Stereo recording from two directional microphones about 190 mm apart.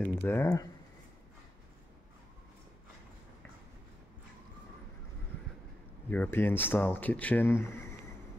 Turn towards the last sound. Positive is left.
turn(degrees=15)  # may be behind; listen again after turning